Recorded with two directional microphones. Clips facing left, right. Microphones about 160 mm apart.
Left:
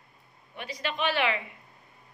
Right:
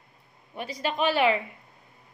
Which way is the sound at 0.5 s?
40° right (ahead or behind).